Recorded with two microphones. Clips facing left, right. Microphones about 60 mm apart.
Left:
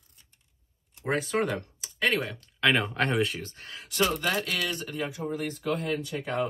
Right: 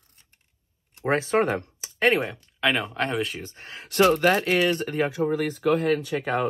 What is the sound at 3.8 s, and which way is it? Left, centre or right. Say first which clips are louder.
Speech: right 8 dB; right.